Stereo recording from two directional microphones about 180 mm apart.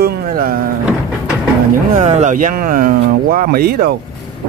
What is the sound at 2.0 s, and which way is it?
Speech, 40° right (ahead or behind).